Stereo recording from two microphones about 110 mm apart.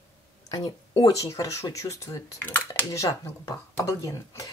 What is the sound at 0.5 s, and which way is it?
Speech, 35° left (ahead or behind).